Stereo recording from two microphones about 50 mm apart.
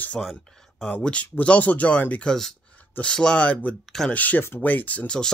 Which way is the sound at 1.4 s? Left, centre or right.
Left.